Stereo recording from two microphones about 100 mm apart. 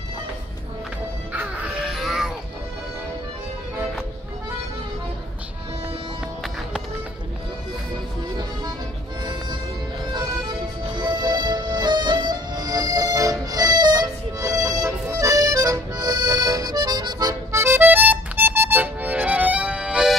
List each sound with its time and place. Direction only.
1.3 s music: 15° right (ahead or behind)
10.9 s music: 45° right (ahead or behind); by 20.2 s 5° right (ahead or behind)